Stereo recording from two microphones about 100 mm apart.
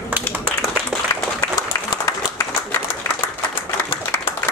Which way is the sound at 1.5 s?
40° left (ahead or behind).